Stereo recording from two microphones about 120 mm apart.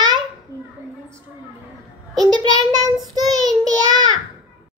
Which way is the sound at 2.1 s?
35° right (ahead or behind).